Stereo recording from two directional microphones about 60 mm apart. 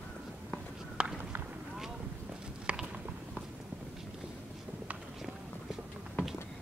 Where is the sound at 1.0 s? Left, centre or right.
Centre.